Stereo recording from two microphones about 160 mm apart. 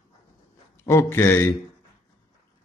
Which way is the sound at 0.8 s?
15° left (ahead or behind).